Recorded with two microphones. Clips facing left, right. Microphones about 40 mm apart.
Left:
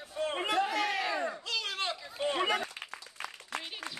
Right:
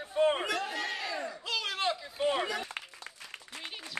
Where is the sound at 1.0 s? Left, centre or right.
Left.